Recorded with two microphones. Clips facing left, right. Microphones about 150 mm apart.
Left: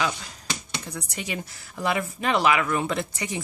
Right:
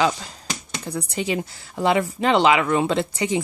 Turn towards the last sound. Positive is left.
turn(degrees=-25)  # may be behind; listen again after turning